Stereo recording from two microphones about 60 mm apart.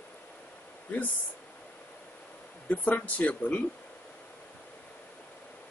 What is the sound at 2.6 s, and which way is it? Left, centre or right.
Speech, left.